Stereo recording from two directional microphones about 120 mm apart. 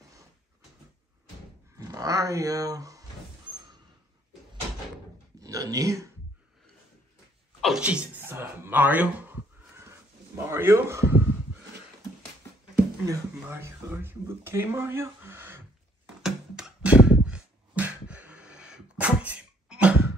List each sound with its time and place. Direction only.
1.8 s speech: 30° right (ahead or behind)
5.4 s speech: 30° right (ahead or behind)
7.6 s speech: 5° right (ahead or behind)
13.0 s speech: 25° right (ahead or behind)
16.2 s a sound: 5° right (ahead or behind)